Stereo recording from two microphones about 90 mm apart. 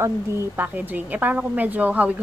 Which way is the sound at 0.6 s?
20° right (ahead or behind).